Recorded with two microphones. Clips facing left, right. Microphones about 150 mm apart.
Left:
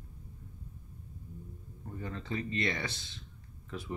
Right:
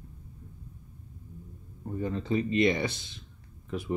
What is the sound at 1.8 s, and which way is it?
Speech, 20° right (ahead or behind).